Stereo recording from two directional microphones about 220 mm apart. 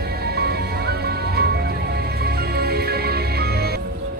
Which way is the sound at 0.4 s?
45° right (ahead or behind).